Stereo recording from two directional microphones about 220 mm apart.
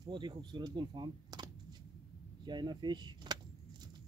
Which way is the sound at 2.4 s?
20° right (ahead or behind).